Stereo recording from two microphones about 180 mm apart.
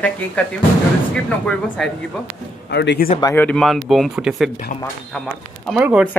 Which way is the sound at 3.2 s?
10° left (ahead or behind).